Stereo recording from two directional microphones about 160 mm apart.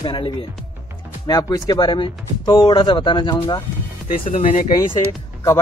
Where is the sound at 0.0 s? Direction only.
35° left (ahead or behind).